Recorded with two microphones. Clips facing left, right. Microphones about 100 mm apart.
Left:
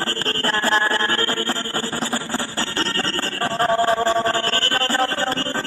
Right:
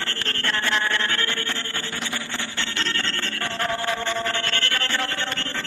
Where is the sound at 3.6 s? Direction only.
35° left (ahead or behind).